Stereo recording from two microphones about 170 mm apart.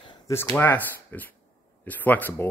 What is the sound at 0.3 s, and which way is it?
Speech, 15° left (ahead or behind).